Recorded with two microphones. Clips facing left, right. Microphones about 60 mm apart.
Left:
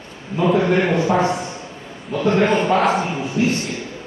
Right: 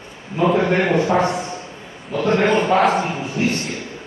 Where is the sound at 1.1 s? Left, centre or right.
Centre.